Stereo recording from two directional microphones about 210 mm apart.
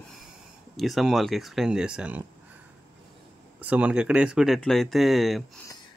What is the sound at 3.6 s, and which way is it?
Speech, 5° right (ahead or behind).